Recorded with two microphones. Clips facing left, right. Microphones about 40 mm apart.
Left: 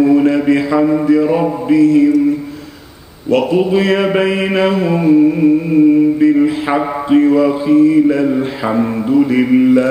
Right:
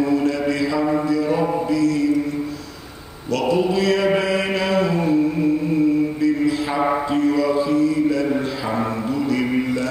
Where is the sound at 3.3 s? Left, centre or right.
Left.